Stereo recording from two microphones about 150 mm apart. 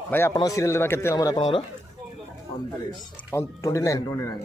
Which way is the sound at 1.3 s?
35° left (ahead or behind).